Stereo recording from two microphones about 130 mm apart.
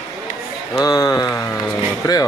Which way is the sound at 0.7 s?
30° left (ahead or behind).